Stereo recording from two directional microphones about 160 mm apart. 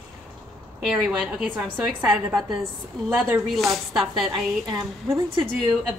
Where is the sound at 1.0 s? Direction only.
5° right (ahead or behind).